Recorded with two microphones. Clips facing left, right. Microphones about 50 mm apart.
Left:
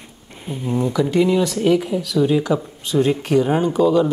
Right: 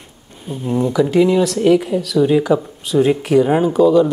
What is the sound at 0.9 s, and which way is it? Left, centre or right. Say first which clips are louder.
Speech: right 4 dB; centre.